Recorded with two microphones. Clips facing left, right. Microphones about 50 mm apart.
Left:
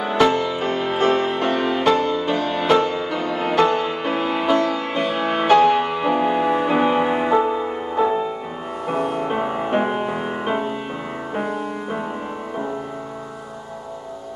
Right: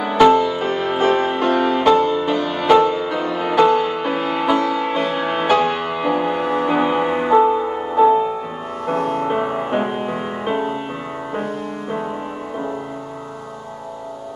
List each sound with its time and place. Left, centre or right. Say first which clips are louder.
0.0 s music: right 5 dB; centre